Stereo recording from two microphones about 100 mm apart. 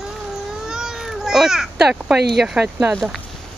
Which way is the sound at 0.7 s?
5° right (ahead or behind).